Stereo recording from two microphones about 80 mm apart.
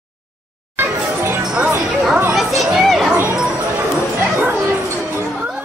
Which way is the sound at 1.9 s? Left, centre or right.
Centre.